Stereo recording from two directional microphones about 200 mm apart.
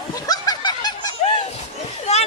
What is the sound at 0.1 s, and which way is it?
Snicker, 20° left (ahead or behind).